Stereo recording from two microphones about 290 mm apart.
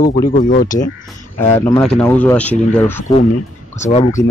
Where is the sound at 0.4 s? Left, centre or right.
Left.